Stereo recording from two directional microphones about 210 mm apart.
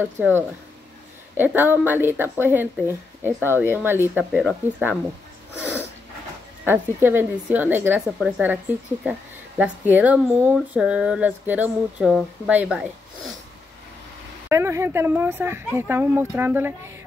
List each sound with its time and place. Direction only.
0.0 s speech: 5° right (ahead or behind)
6.6 s speech: 10° right (ahead or behind)
14.5 s speech: 15° right (ahead or behind)